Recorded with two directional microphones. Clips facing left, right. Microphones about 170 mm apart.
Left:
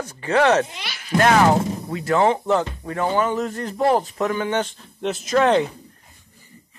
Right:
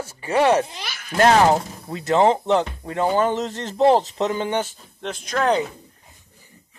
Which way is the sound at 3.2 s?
30° right (ahead or behind).